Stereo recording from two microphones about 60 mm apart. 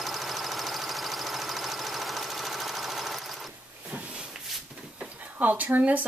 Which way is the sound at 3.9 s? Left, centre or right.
Centre.